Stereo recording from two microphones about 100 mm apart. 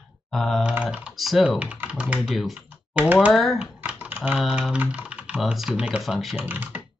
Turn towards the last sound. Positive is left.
turn(degrees=-15)  # may be behind; listen again after turning